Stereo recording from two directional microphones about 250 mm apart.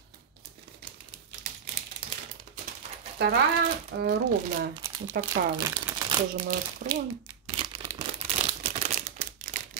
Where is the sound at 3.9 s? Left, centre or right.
Right.